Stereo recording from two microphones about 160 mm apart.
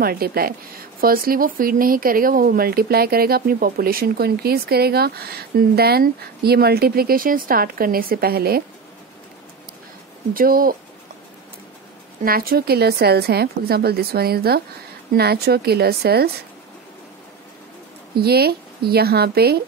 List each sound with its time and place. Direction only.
0.0 s speech: 70° right (ahead or behind)
10.3 s speech: 65° right (ahead or behind)
12.2 s a woman's voice: 70° right (ahead or behind)
18.1 s a woman's voice: 75° right (ahead or behind)